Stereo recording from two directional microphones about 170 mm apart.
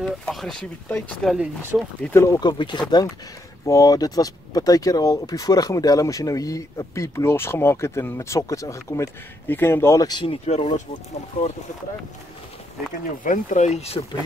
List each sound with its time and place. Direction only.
0.0 s speech: centre (ahead or behind)
2.0 s speech: 10° left (ahead or behind); by 10.7 s 35° left (ahead or behind)
13.2 s speech: 50° left (ahead or behind)